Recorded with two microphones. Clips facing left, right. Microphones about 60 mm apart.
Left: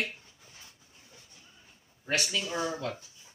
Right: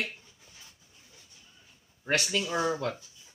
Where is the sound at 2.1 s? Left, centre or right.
Right.